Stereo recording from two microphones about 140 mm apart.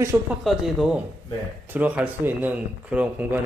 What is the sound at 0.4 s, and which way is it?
A man's voice, centre (ahead or behind).